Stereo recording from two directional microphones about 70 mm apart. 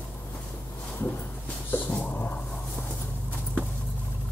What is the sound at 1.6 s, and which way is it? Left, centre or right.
Dog, left.